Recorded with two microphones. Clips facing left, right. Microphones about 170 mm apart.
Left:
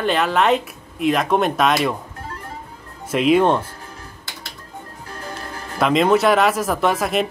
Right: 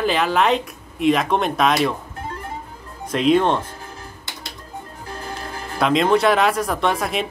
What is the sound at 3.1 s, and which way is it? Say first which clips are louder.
Speech: left 1 dB; 5° left (ahead or behind).